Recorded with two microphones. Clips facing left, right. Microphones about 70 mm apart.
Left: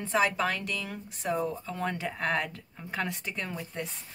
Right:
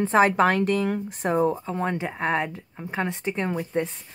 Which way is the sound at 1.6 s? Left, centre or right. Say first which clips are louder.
Right 6 dB; right.